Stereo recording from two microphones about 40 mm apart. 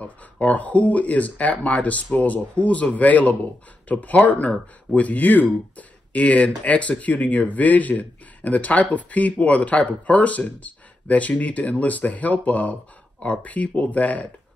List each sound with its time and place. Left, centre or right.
0.0 s speech: left
13.2 s speech: left
13.5 s speech: left